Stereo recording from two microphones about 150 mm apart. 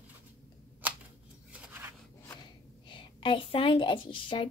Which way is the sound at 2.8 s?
35° left (ahead or behind).